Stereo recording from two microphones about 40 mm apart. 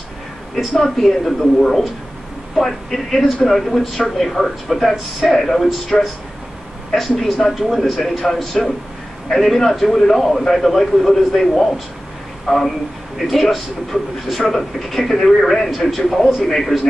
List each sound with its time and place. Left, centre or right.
0.7 s a man's voice: centre
6.9 s a man's voice: centre